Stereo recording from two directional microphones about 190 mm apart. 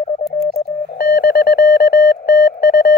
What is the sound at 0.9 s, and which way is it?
Telephone dialing, 55° left (ahead or behind).